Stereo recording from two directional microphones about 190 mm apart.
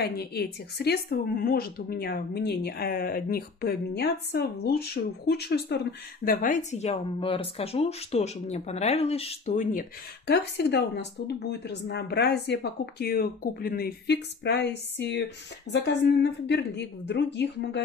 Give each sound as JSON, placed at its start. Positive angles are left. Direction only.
{"t": 0.0, "sound": "speech", "side_deg": 55}
{"t": 9.5, "sound": "speech", "side_deg": 45}